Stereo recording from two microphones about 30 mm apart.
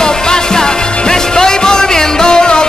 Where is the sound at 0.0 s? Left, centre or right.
Left.